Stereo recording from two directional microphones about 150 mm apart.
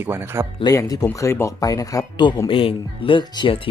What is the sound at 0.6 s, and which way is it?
Speech, 25° left (ahead or behind).